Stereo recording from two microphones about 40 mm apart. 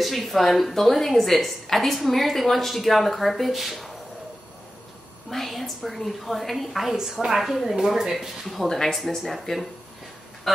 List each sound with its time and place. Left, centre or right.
0.0 s a woman's voice: centre
5.3 s a woman's voice: centre
8.6 s a woman's voice: centre